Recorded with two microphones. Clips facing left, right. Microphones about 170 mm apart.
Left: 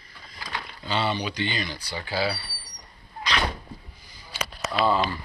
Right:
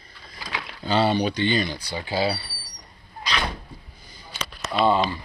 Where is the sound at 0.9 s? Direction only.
35° right (ahead or behind).